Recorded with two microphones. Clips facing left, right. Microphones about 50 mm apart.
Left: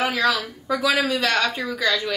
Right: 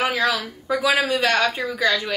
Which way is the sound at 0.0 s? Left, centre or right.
Centre.